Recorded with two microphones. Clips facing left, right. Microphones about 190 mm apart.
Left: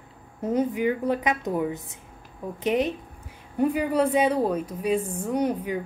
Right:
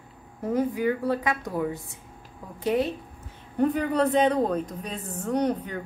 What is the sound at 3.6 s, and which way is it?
A woman's voice, 10° left (ahead or behind).